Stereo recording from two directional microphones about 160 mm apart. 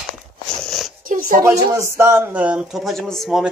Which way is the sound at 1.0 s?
60° right (ahead or behind).